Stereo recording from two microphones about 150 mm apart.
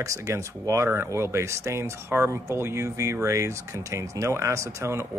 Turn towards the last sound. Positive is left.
turn(degrees=-20)  # may be behind; listen again after turning